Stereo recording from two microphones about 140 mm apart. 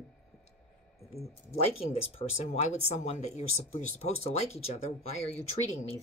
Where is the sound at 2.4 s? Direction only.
50° left (ahead or behind).